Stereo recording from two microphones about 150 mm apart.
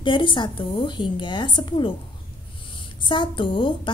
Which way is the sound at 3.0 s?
35° left (ahead or behind).